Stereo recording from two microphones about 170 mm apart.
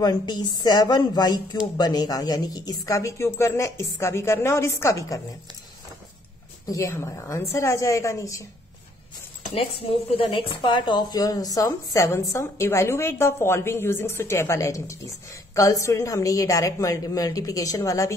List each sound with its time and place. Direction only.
0.0 s speech: 25° left (ahead or behind)
6.7 s a woman's voice: 15° left (ahead or behind)
10.1 s a woman's voice: 30° left (ahead or behind)